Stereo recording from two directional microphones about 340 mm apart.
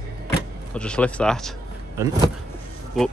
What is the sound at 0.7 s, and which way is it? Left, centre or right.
A man's voice, centre.